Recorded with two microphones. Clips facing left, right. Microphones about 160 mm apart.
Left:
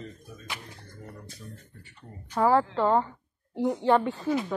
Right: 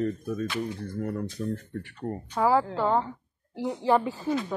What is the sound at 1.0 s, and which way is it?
Speech, 75° right (ahead or behind).